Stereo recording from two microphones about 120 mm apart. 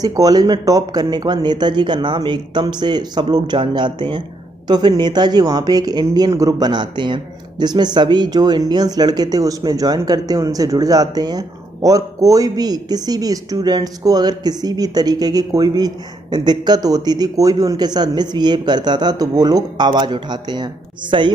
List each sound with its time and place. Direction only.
0.0 s speech: 30° right (ahead or behind)